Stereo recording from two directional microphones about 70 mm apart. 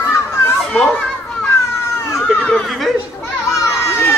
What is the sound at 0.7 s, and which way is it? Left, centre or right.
Children playing, centre.